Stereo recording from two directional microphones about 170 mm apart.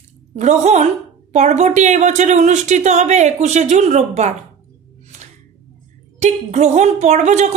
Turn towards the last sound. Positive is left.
turn(degrees=-45)  # may be behind; listen again after turning